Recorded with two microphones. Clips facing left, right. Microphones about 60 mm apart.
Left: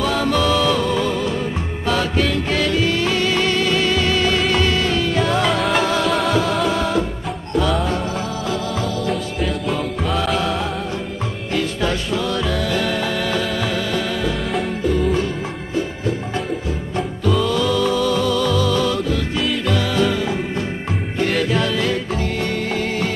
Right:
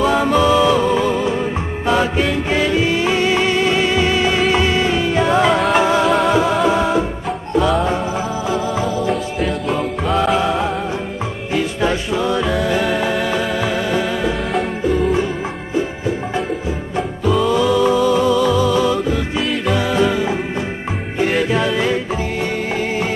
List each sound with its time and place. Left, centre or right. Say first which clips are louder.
0.0 s music: right 4 dB; centre
6.0 s music: right 4 dB; centre
6.3 s music: right 4 dB; centre
8.5 s music: right 4 dB; centre
9.1 s music: right 3 dB; centre
16.9 s music: right 2 dB; centre
17.5 s music: right 4 dB; centre